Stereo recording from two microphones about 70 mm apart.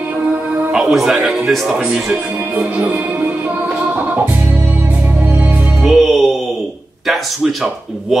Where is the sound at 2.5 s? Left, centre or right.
Right.